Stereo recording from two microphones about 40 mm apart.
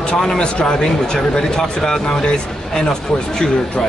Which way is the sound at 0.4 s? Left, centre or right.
Left.